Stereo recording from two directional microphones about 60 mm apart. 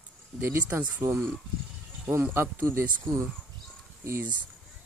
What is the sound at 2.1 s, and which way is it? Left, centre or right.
Speech, right.